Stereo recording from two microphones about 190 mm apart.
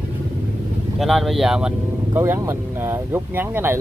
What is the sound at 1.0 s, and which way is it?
Speech, centre (ahead or behind).